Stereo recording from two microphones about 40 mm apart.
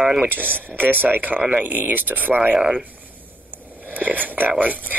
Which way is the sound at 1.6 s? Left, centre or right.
Right.